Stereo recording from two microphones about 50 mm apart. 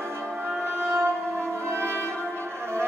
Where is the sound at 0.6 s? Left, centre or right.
Centre.